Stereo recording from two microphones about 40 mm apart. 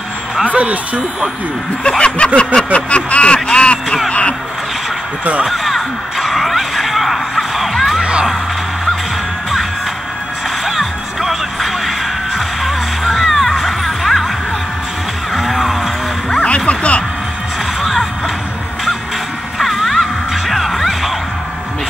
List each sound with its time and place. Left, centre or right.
0.5 s speech: right
1.8 s snicker: left
4.1 s speech: left
5.5 s a sound: centre
8.0 s music: right
10.6 s music: centre
15.3 s music: centre
16.3 s a sound: left
19.6 s music: centre